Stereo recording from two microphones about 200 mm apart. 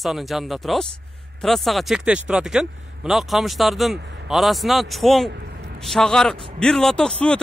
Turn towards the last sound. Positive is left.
turn(degrees=5)  # may be behind; listen again after turning